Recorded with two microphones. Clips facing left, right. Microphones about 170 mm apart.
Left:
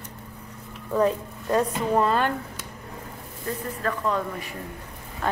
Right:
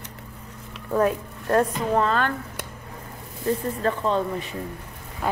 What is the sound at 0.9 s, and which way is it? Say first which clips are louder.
Speech: right 1 dB; 10° right (ahead or behind).